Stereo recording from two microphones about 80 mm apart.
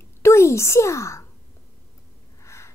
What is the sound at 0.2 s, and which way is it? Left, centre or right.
A child's voice, left.